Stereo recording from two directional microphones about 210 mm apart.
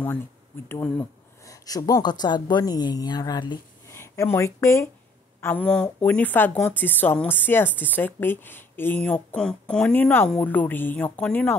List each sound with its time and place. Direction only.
0.7 s speech: 10° left (ahead or behind)